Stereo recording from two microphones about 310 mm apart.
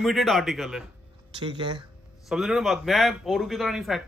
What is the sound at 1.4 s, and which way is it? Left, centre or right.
Speech, centre.